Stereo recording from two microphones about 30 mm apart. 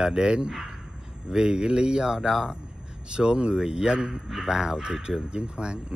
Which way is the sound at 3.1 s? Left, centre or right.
Right.